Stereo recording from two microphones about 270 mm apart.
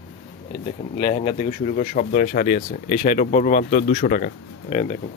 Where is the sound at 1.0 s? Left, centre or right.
Left.